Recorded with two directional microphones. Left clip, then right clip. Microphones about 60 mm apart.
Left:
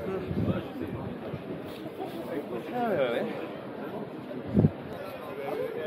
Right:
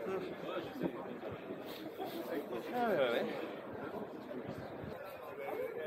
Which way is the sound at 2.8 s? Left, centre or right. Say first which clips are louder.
Left 5 dB; right.